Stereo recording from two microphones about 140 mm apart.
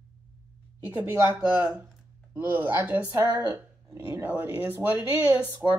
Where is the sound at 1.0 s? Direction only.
15° right (ahead or behind).